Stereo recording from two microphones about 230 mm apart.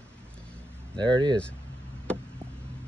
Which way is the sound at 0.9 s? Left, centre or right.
Centre.